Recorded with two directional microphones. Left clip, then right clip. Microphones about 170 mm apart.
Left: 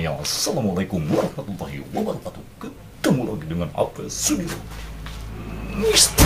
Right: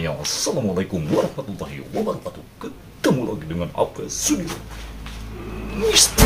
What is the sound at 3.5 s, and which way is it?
Speech, 5° left (ahead or behind).